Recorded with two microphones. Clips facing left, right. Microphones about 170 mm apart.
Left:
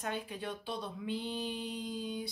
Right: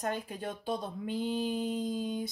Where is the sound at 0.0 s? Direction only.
45° right (ahead or behind).